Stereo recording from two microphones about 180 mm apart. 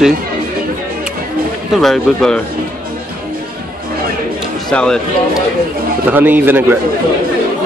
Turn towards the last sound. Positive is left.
turn(degrees=-10)  # may be behind; listen again after turning